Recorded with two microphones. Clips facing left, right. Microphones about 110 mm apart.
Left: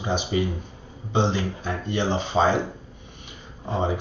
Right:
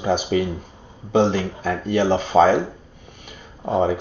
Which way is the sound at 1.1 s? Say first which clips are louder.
Right 5 dB; 45° right (ahead or behind).